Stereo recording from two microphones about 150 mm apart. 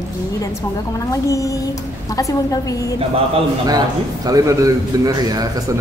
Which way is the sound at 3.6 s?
25° right (ahead or behind).